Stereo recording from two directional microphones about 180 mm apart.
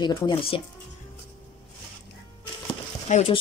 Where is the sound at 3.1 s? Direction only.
35° left (ahead or behind).